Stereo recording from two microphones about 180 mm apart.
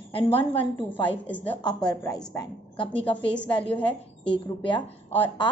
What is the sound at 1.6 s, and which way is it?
A woman's voice, 20° left (ahead or behind).